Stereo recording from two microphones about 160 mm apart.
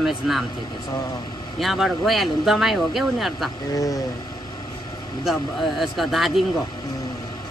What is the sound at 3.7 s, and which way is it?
Speech, 20° left (ahead or behind).